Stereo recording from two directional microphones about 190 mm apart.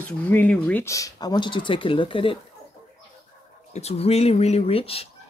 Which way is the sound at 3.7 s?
35° left (ahead or behind).